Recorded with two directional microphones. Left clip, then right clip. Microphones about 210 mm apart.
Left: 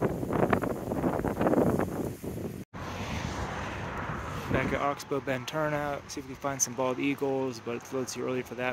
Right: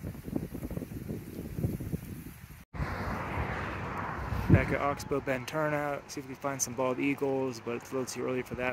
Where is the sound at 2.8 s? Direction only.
20° right (ahead or behind).